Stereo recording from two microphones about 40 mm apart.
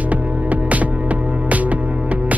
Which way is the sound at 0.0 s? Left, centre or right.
Right.